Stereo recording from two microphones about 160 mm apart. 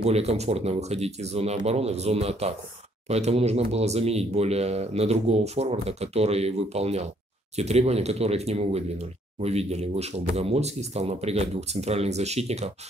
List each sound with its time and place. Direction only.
0.0 s speech: 40° right (ahead or behind)